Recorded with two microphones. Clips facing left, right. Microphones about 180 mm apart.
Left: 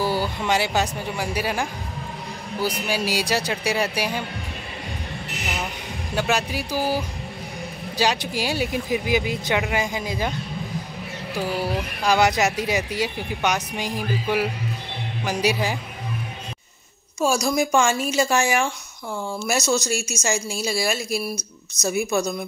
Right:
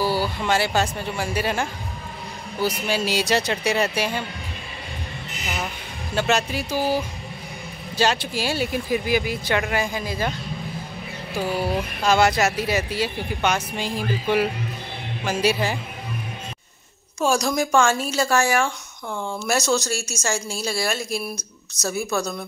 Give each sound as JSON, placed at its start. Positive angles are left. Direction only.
{"t": 0.0, "sound": "speech", "side_deg": 20}
{"t": 6.1, "sound": "speech", "side_deg": 10}
{"t": 8.0, "sound": "speech", "side_deg": 15}
{"t": 11.4, "sound": "speech", "side_deg": -15}
{"t": 12.0, "sound": "speech", "side_deg": 15}
{"t": 17.2, "sound": "speech", "side_deg": 5}